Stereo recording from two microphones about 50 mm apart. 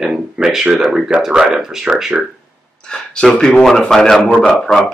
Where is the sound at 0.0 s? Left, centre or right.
Centre.